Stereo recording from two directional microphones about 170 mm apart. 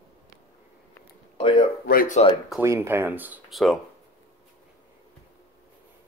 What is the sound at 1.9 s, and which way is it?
Speech, 60° left (ahead or behind).